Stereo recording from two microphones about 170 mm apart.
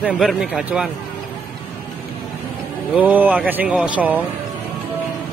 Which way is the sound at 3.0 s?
10° right (ahead or behind).